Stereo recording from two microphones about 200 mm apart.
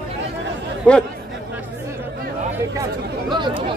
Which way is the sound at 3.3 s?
25° right (ahead or behind).